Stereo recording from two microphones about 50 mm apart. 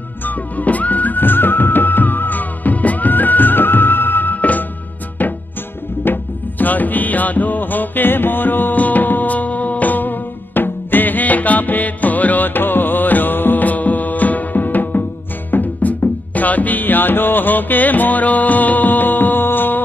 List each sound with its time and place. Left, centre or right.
0.2 s music: left